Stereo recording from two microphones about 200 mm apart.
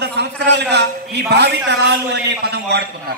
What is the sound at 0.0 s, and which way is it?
A man's voice, 55° right (ahead or behind).